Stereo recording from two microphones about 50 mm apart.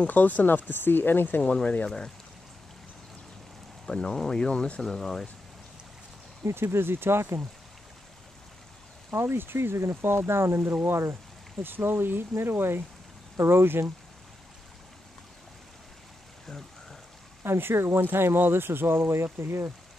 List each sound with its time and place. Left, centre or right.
0.0 s speech: left
1.5 s speech: left
3.8 s speech: centre
4.5 s speech: left
4.8 s speech: centre
6.4 s speech: right
9.1 s speech: right
10.7 s speech: right
17.4 s speech: right